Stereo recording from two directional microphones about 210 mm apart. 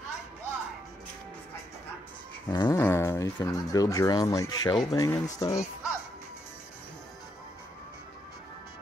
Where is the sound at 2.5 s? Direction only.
15° left (ahead or behind).